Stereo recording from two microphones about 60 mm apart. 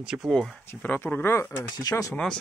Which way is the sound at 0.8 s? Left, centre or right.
Left.